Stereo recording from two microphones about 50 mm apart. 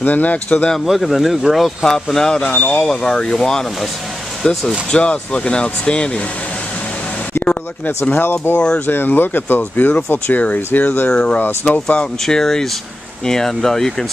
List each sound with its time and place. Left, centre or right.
0.0 s speech: left
0.8 s speech: centre
2.0 s speech: centre
2.5 s speech: left
2.8 s speech: centre
7.3 s a sound: left
7.8 s speech: left
8.5 s speech: left
8.8 s speech: left
11.1 s speech: centre